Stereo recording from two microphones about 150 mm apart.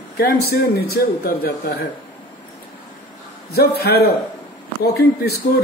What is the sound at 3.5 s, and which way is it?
Speech, 90° left.